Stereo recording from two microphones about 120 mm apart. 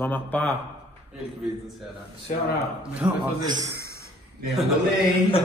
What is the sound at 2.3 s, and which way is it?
Speech, 90° left.